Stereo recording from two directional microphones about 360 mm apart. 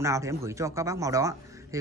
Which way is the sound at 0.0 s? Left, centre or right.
Centre.